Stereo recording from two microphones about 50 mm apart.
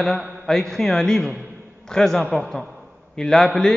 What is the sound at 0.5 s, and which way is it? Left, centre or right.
A man's voice, centre.